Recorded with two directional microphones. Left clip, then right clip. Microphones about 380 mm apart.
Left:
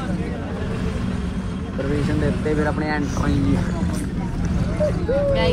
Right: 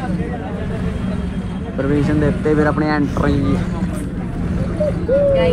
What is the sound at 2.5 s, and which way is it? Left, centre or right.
Speech, right.